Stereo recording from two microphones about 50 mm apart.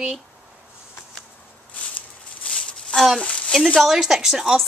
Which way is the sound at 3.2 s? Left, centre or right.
Left.